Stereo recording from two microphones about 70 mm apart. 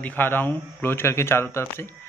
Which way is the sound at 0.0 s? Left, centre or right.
Left.